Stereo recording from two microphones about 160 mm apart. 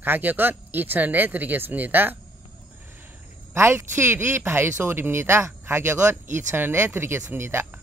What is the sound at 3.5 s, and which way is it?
Speech, 15° right (ahead or behind).